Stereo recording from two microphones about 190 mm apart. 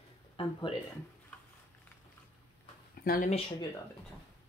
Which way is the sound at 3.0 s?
50° left (ahead or behind).